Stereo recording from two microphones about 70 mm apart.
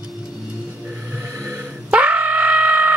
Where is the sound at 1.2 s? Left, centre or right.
Right.